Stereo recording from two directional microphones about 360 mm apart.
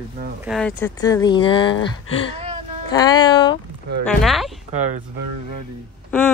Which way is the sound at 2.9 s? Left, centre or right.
Centre.